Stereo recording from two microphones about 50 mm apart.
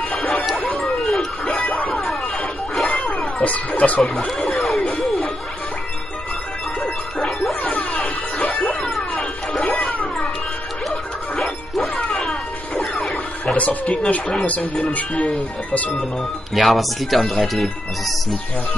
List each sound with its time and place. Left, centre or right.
0.3 s music: centre
1.7 s music: left
2.7 s a sound: centre
3.2 s music: left
4.4 s music: centre
7.2 s dog: centre
8.5 s music: centre
11.3 s music: centre
13.6 s speech: left
16.5 s speech: centre